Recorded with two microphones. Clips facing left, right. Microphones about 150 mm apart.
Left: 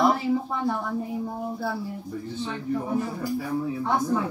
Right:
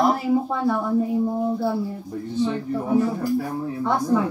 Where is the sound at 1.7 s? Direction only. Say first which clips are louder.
Right 5 dB; 40° right (ahead or behind).